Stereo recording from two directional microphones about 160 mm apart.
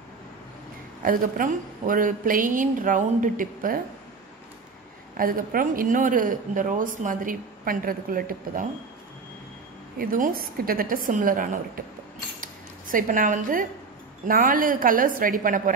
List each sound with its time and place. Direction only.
1.0 s a man's voice: 60° right (ahead or behind)
5.1 s a man's voice: 60° right (ahead or behind)
9.9 s a man's voice: 60° right (ahead or behind)
12.4 s a sound: 55° right (ahead or behind)
14.2 s a man's voice: 60° right (ahead or behind)